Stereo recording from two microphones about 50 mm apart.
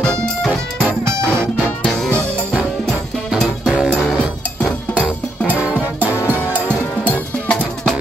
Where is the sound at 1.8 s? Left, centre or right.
Centre.